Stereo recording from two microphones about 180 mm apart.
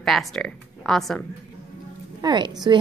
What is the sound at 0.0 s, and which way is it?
Speech, centre (ahead or behind).